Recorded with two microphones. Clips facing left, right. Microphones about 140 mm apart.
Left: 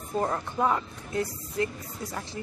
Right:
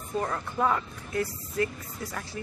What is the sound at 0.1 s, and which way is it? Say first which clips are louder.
Speech: left 2 dB; 20° left (ahead or behind).